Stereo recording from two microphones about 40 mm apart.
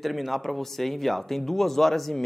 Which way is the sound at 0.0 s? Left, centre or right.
Centre.